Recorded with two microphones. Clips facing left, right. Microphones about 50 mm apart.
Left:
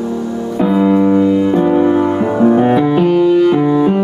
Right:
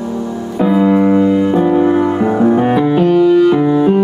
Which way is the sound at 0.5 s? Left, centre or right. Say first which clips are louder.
Right 1 dB; centre.